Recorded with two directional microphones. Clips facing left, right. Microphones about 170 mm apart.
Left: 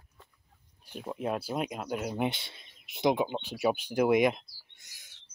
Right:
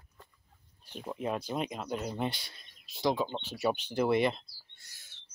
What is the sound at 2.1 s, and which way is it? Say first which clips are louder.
Speech: left 3 dB; 20° left (ahead or behind).